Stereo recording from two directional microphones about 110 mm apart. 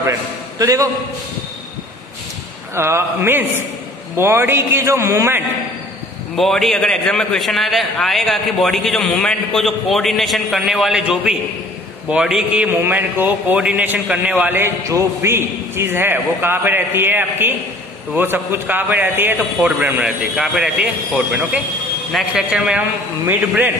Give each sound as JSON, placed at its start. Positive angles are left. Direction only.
{"t": 0.0, "sound": "a sound", "side_deg": -30}
{"t": 2.7, "sound": "a man's voice", "side_deg": -25}
{"t": 6.3, "sound": "a man's voice", "side_deg": 0}
{"t": 12.6, "sound": "a man's voice", "side_deg": -20}
{"t": 14.6, "sound": "a man's voice", "side_deg": -25}
{"t": 20.3, "sound": "a man's voice", "side_deg": -5}